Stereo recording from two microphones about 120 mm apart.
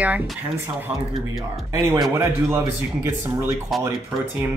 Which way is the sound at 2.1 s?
20° right (ahead or behind).